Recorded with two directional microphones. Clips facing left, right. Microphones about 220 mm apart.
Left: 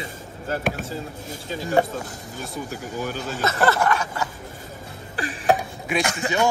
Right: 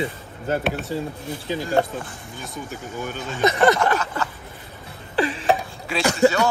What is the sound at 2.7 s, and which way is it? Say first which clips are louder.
Speech: even; centre (ahead or behind).